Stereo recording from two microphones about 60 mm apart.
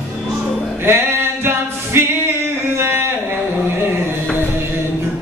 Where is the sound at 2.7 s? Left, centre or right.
Right.